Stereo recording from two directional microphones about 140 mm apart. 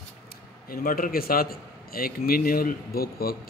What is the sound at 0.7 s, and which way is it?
A man's voice, 90° left.